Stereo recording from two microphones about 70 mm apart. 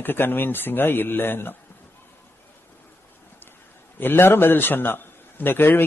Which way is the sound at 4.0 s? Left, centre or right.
Left.